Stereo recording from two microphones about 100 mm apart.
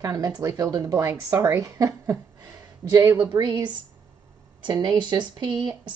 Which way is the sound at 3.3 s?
50° right (ahead or behind).